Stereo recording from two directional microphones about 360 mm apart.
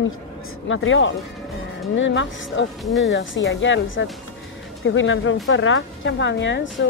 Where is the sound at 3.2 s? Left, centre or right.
Left.